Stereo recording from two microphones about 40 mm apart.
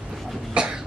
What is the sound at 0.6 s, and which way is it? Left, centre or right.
Cough, right.